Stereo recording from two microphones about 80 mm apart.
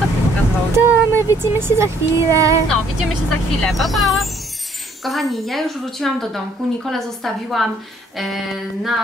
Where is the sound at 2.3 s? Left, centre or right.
Right.